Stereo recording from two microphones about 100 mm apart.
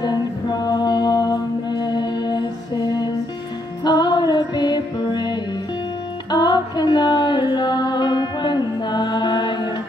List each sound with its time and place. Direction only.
0.0 s music: 40° left (ahead or behind)